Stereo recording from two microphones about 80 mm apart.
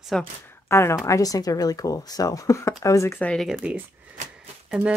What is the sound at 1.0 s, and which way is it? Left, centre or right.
Speech, left.